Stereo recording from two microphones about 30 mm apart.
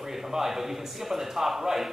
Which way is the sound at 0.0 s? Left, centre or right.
Centre.